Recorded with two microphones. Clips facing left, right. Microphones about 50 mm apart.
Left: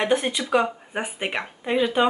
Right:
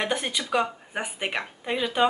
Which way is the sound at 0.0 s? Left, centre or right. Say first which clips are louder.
Left 5 dB; centre.